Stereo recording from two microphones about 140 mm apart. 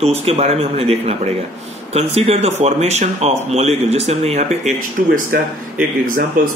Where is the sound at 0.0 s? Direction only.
50° right (ahead or behind).